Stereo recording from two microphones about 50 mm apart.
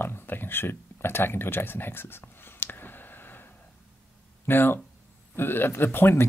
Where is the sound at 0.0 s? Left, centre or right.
Left.